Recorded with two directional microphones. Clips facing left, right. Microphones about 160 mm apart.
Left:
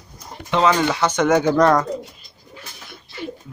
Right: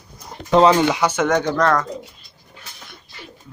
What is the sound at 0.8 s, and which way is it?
Speech, 15° right (ahead or behind).